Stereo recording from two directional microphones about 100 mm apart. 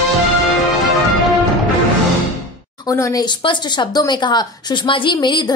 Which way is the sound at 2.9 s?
30° left (ahead or behind).